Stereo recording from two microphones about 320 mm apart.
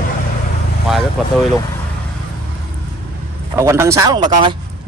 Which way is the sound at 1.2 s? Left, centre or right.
Centre.